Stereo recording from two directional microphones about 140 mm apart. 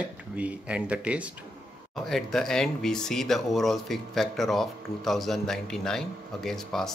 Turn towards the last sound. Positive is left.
turn(degrees=5)  # may be behind; listen again after turning